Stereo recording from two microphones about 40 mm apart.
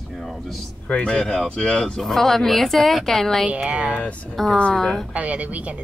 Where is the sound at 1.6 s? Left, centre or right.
Centre.